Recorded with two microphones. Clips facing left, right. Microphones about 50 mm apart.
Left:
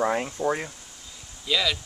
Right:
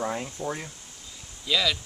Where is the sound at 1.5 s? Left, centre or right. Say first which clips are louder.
Even; centre.